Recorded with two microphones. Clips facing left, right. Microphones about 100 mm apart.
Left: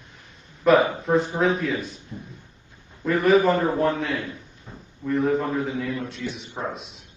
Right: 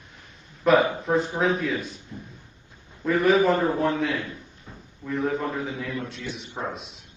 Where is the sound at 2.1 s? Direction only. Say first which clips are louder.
Left 2 dB; 15° left (ahead or behind).